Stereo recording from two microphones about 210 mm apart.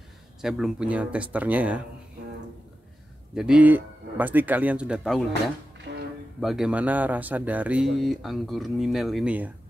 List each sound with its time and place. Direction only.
0.4 s speech: centre (ahead or behind)
3.3 s speech: 5° right (ahead or behind)
5.9 s music: 60° right (ahead or behind)
6.4 s speech: 5° right (ahead or behind)